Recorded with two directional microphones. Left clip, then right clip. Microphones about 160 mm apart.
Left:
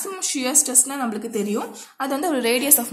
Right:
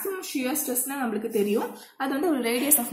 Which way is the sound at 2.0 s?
40° left (ahead or behind).